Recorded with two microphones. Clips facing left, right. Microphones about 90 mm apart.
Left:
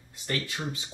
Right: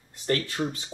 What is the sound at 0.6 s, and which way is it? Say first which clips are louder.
Speech: right 6 dB; 15° right (ahead or behind).